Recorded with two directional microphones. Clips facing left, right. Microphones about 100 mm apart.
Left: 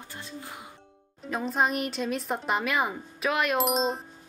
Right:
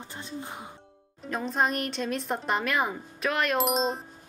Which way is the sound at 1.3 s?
Centre (ahead or behind).